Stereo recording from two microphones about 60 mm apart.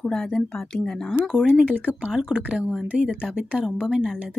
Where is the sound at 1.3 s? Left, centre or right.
Centre.